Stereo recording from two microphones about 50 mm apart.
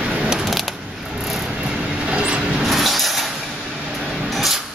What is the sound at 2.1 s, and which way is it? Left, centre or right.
Vehicle, right.